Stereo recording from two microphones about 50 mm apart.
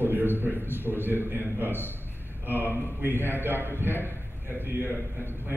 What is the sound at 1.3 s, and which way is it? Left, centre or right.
A man's voice, right.